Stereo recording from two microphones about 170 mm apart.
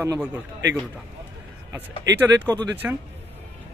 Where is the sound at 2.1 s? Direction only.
20° right (ahead or behind).